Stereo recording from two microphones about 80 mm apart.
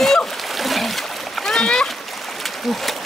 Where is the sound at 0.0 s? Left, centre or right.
Centre.